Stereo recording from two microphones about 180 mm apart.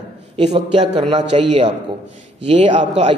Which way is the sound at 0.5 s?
25° right (ahead or behind).